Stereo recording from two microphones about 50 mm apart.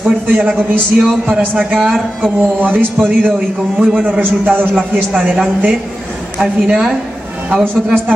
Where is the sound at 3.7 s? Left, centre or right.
Centre.